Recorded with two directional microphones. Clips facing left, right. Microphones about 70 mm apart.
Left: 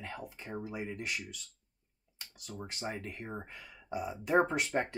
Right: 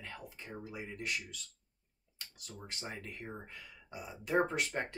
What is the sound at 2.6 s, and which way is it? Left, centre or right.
Speech, left.